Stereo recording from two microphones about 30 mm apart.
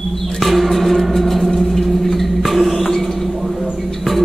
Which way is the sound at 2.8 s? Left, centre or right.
Centre.